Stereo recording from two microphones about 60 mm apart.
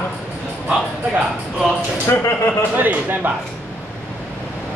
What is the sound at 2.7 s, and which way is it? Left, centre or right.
Speech, right.